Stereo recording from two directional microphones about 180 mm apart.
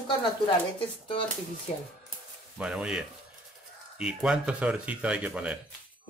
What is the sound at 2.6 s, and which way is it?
Speech, 5° right (ahead or behind).